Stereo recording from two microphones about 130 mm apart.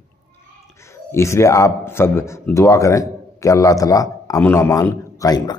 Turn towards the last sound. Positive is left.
turn(degrees=30)  # may be behind; listen again after turning